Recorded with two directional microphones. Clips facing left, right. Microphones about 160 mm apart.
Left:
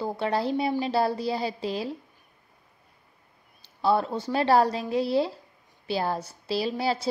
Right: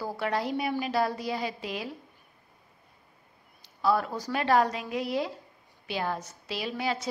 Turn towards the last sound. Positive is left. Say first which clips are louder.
# left 4 dB
turn(degrees=30)  # may be behind; listen again after turning